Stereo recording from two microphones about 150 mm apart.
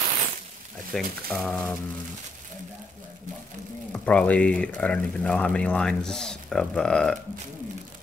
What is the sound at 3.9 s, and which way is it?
Speech, 10° left (ahead or behind).